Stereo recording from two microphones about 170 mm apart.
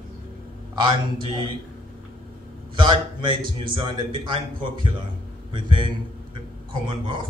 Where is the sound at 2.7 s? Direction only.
30° right (ahead or behind).